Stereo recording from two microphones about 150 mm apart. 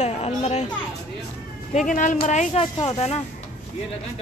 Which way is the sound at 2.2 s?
45° left (ahead or behind).